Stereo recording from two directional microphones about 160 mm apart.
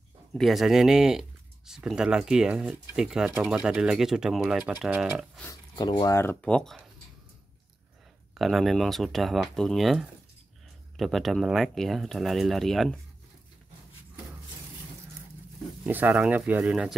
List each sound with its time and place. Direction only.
0.3 s speech: centre (ahead or behind)
5.5 s speech: 25° left (ahead or behind)
6.4 s speech: 5° left (ahead or behind)
8.4 s speech: centre (ahead or behind)
15.8 s speech: 10° right (ahead or behind)